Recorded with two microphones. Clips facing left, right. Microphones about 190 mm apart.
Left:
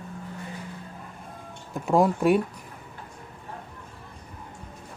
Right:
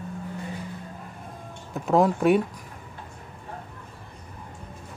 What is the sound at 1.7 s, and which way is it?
Speech, centre (ahead or behind).